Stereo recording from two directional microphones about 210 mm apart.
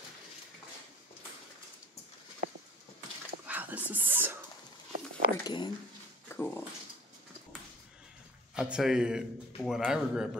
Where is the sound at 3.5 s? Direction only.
10° right (ahead or behind).